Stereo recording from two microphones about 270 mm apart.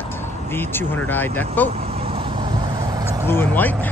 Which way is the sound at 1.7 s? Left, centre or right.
Right.